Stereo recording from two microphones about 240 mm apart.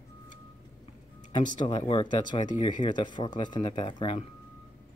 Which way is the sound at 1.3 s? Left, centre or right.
Centre.